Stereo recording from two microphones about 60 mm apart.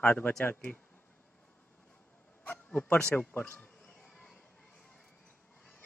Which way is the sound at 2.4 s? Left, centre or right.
Left.